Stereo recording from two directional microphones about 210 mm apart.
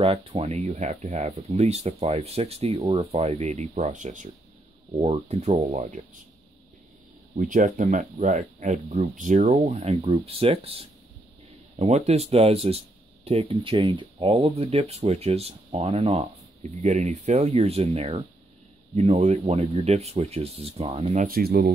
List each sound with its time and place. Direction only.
0.0 s speech: 25° right (ahead or behind)
7.3 s speech: 40° right (ahead or behind)